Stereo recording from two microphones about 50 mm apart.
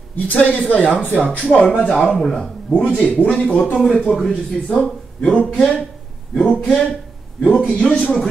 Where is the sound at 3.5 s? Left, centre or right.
Left.